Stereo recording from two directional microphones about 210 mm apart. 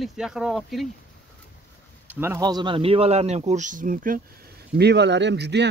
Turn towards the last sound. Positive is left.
turn(degrees=-55)  # may be behind; listen again after turning